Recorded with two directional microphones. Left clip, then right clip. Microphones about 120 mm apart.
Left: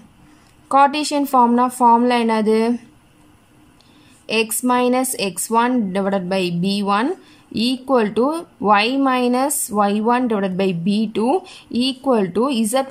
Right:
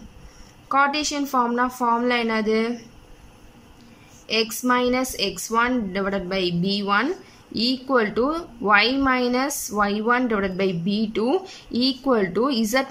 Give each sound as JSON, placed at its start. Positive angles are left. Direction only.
{"t": 0.7, "sound": "speech", "side_deg": 40}
{"t": 4.3, "sound": "speech", "side_deg": 40}